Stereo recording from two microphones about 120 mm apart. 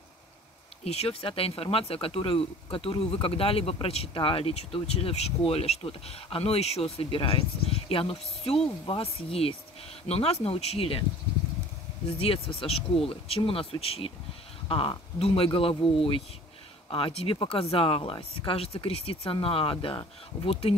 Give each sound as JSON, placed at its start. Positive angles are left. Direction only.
{"t": 0.8, "sound": "speech", "side_deg": 55}
{"t": 12.2, "sound": "speech", "side_deg": 50}